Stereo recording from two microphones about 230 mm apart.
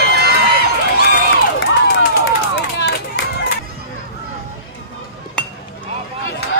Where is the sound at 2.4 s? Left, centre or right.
Left.